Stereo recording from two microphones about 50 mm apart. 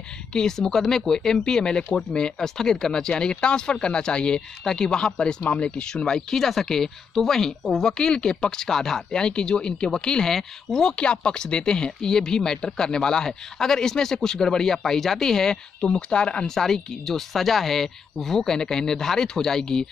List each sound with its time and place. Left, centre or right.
0.3 s speech: centre
6.3 s speech: centre
16.4 s speech: centre